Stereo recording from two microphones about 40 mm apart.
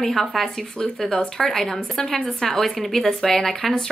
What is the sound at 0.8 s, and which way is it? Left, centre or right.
Speech, centre.